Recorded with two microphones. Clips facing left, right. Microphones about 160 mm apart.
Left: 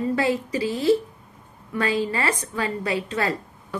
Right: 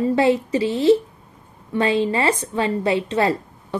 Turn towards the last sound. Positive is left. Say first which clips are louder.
# right 6 dB
turn(degrees=-25)  # may be behind; listen again after turning